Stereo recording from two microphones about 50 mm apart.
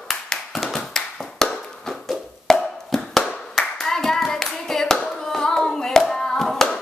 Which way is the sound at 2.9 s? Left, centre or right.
Centre.